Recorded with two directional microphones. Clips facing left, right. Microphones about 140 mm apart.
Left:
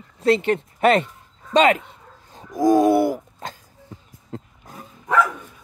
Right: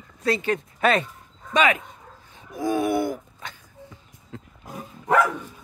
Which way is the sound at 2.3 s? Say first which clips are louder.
Left 8 dB; 40° left (ahead or behind).